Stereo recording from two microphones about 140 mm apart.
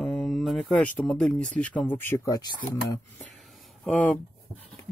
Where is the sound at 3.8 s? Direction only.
10° left (ahead or behind).